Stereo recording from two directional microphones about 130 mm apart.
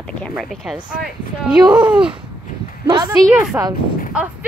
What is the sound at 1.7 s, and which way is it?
Speech, 35° right (ahead or behind).